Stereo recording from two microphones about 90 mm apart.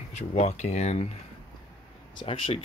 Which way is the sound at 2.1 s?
70° left (ahead or behind).